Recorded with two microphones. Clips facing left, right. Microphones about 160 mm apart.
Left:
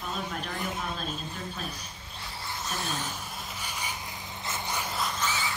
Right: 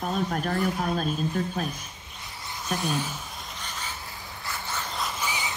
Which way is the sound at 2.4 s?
15° right (ahead or behind).